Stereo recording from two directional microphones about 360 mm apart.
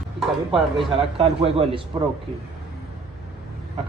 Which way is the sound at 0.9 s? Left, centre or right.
Centre.